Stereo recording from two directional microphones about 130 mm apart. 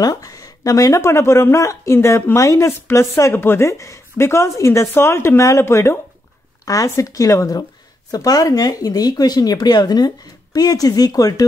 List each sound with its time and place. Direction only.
0.0 s speech: 30° left (ahead or behind)